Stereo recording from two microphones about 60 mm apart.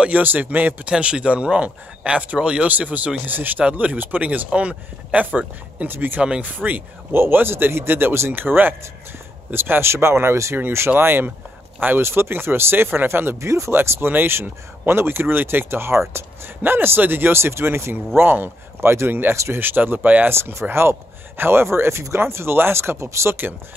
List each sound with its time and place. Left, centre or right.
0.0 s speech: right
0.8 s speech: centre; by 13.5 s right
13.5 s speech: right
13.7 s speech: right
19.3 s speech: right
19.6 s speech: right
20.3 s speech: right